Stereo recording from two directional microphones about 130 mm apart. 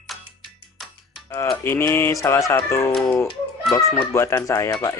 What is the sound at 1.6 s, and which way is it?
Speech, 20° left (ahead or behind).